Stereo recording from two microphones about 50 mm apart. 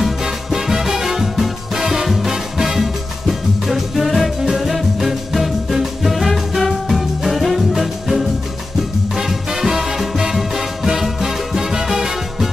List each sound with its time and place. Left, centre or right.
0.0 s music: centre